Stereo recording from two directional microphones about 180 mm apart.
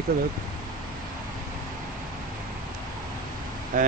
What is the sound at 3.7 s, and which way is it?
Speech, 50° right (ahead or behind).